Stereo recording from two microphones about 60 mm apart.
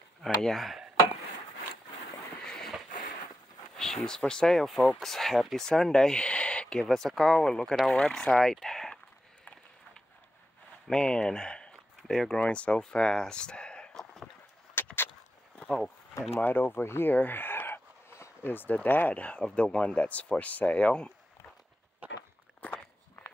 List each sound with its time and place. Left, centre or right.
0.2 s speech: centre
2.4 s a sound: centre
3.7 s speech: centre
10.9 s speech: centre
12.4 s speech: left
14.8 s vehicle: left
16.3 s speech: left
17.1 s a sound: left
18.4 s speech: left
22.6 s walk: left